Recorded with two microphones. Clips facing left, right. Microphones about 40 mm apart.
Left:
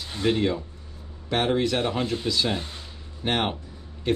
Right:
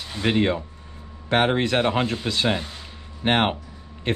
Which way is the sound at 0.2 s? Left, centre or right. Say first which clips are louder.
Right 2 dB; right.